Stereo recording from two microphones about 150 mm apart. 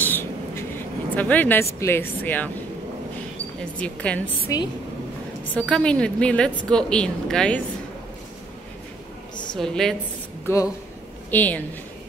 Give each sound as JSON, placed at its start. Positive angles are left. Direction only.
{"t": 0.0, "sound": "a sound", "side_deg": 15}
{"t": 1.8, "sound": "speech", "side_deg": 15}
{"t": 3.8, "sound": "speech", "side_deg": 10}
{"t": 4.5, "sound": "a woman's voice", "side_deg": 25}
{"t": 5.6, "sound": "speech", "side_deg": 5}
{"t": 9.6, "sound": "a woman's voice", "side_deg": 5}
{"t": 10.4, "sound": "a woman's voice", "side_deg": 20}